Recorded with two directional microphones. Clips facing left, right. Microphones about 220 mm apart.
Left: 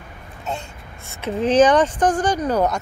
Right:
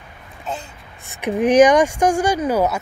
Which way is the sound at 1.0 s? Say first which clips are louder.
Right 3 dB; 15° right (ahead or behind).